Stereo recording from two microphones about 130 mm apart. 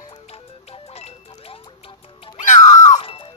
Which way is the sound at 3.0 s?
45° left (ahead or behind).